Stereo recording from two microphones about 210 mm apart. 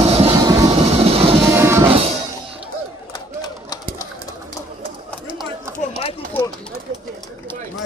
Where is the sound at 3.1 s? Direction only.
20° left (ahead or behind).